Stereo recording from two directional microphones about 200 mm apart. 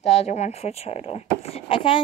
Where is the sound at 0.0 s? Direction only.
35° left (ahead or behind).